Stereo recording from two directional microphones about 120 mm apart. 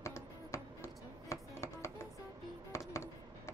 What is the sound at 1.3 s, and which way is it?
Music, 25° left (ahead or behind).